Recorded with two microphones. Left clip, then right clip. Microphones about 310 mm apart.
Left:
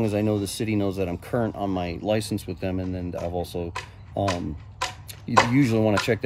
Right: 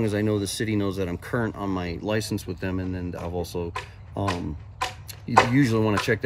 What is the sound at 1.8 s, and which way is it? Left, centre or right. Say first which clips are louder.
Speech: left 3 dB; centre.